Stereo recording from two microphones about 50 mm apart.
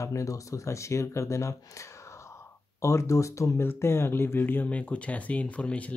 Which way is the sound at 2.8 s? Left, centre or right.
Left.